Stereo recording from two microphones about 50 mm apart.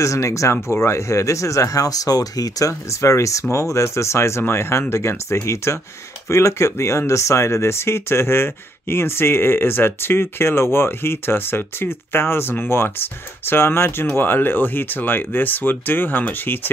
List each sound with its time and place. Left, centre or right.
0.0 s speech: left
0.8 s speech: left